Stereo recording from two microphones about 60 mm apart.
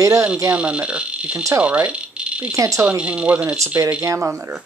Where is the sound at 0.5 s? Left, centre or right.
Centre.